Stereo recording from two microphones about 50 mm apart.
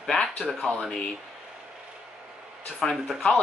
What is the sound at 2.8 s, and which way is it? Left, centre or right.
Speech, centre.